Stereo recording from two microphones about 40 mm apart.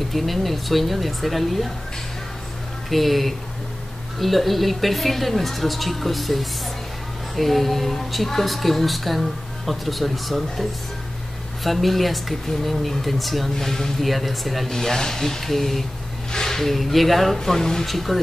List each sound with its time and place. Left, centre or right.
0.1 s a woman's voice: centre
2.9 s a woman's voice: centre
17.8 s a woman's voice: centre